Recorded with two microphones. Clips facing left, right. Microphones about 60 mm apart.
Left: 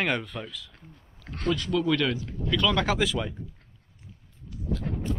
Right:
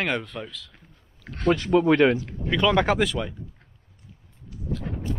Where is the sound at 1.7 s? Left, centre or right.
Right.